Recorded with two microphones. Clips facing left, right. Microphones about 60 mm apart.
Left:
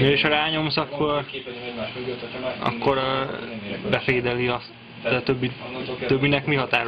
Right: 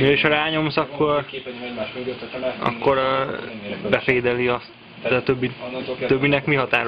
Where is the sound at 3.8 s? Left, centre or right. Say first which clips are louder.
Right 4 dB; right.